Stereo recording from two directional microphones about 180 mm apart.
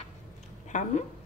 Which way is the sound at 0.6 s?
45° left (ahead or behind).